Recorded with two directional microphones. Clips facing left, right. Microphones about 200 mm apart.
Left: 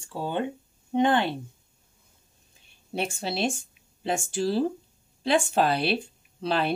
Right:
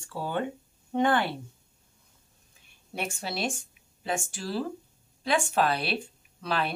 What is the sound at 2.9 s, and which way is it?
Speech, 30° left (ahead or behind).